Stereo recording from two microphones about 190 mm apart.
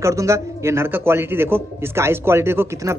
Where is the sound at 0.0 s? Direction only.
15° right (ahead or behind).